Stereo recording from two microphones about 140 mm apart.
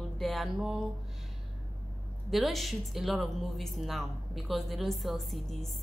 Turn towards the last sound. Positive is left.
turn(degrees=0)  # may be behind; listen again after turning